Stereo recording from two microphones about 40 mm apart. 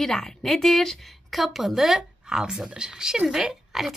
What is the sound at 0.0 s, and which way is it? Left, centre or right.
A woman's voice, centre.